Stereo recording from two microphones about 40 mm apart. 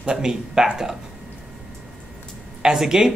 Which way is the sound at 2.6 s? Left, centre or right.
Centre.